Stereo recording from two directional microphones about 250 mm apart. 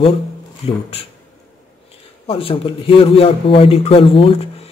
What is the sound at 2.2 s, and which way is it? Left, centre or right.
Speech, left.